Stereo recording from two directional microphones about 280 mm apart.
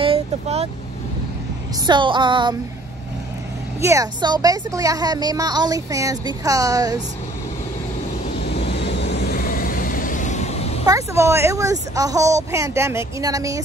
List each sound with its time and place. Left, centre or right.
0.0 s vehicle: right
1.9 s a woman's voice: centre
3.8 s a woman's voice: centre
9.0 s vehicle: left
10.9 s a woman's voice: centre